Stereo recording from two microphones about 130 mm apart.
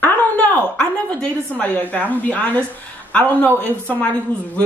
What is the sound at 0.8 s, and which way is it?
Speech, 5° left (ahead or behind).